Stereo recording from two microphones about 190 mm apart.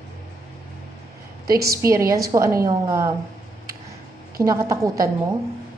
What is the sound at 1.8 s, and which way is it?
A woman's voice, 15° right (ahead or behind).